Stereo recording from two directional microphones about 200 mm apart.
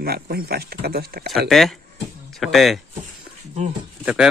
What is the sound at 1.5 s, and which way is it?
Speech, centre (ahead or behind).